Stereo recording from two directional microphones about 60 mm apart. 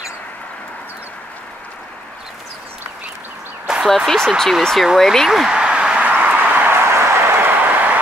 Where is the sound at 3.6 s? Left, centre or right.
Centre.